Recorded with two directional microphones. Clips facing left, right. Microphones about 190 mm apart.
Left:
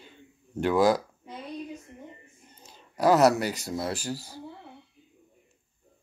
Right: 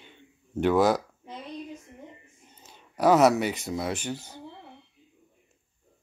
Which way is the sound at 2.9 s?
Centre (ahead or behind).